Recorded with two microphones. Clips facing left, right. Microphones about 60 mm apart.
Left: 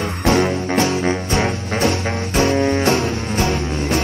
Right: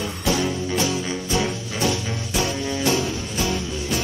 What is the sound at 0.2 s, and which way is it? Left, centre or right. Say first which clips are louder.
Music: left 7 dB; left.